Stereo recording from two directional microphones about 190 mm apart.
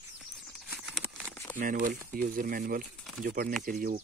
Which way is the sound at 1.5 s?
45° right (ahead or behind).